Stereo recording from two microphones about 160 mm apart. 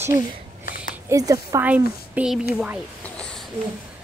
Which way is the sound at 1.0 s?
20° right (ahead or behind).